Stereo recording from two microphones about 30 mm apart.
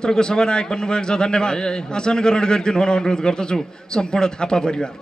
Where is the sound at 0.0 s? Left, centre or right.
Left.